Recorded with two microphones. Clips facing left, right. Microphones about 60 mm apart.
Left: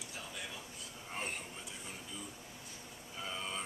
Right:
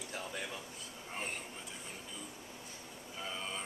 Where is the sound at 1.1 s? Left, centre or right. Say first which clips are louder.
Even; centre.